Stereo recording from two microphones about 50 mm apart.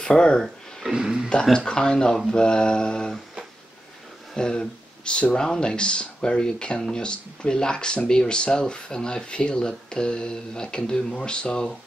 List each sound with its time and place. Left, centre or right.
0.0 s speech: centre
0.8 s speech: centre
1.4 s speech: centre
4.4 s speech: centre